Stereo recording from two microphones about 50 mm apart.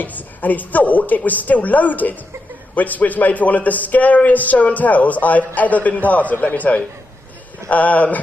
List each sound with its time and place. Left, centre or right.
0.0 s a man's voice: left